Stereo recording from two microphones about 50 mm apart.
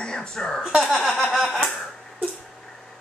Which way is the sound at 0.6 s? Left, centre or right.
Centre.